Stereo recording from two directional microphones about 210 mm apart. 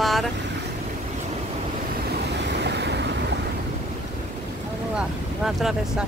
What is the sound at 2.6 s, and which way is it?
Waves, 55° right (ahead or behind).